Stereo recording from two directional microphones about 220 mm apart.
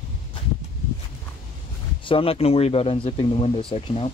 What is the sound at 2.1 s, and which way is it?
Speech, 25° left (ahead or behind).